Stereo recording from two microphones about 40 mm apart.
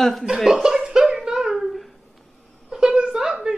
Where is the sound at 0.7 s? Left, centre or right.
Centre.